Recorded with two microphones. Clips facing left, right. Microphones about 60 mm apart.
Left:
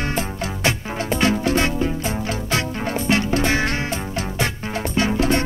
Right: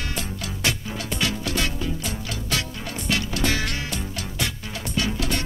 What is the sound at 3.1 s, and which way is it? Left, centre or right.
Music, left.